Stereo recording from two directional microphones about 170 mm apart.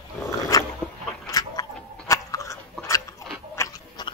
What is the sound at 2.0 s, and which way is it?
Chewing, 20° left (ahead or behind).